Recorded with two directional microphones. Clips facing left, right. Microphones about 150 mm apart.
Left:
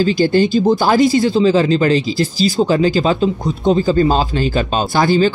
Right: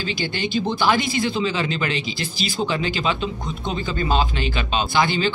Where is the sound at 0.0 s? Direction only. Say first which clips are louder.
Left 13 dB; 40° left (ahead or behind).